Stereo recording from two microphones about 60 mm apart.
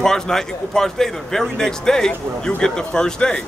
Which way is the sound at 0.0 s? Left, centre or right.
Centre.